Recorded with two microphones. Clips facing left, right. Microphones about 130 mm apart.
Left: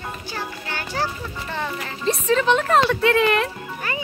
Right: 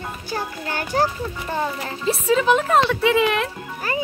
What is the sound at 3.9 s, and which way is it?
Music, 35° right (ahead or behind).